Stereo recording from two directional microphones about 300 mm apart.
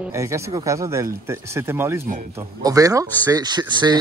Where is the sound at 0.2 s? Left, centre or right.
Centre.